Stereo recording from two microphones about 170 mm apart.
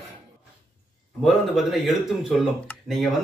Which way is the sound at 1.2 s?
Centre (ahead or behind).